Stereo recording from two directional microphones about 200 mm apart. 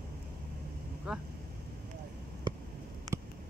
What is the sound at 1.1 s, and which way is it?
Speech, 5° right (ahead or behind).